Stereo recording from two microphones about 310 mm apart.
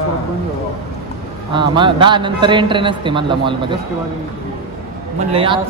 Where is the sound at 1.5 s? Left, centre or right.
Centre.